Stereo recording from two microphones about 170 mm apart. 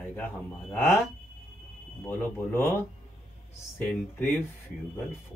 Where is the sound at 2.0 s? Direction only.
15° left (ahead or behind).